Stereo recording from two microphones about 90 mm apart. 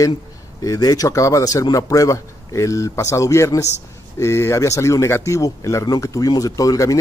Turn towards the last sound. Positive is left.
turn(degrees=40)  # may be behind; listen again after turning